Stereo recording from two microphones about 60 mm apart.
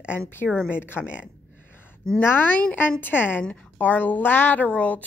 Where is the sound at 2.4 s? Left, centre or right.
Left.